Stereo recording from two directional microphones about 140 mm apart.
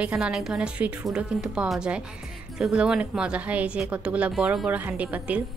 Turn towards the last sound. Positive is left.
turn(degrees=-10)  # may be behind; listen again after turning